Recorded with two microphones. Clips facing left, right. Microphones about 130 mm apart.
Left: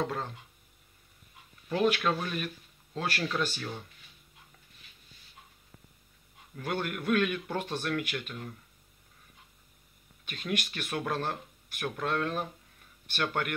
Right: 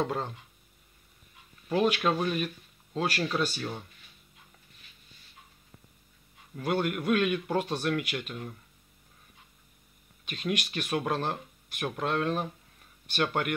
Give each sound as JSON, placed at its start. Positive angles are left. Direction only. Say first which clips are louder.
{"t": 0.0, "sound": "speech", "louder": "right 2 dB", "side_deg": -20}
{"t": 1.7, "sound": "speech", "louder": "right 1 dB", "side_deg": -15}
{"t": 6.5, "sound": "speech", "louder": "right 5 dB", "side_deg": -15}
{"t": 10.2, "sound": "speech", "louder": "right 2 dB", "side_deg": -15}